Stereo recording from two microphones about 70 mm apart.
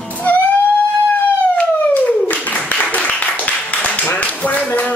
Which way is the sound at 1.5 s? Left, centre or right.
Left.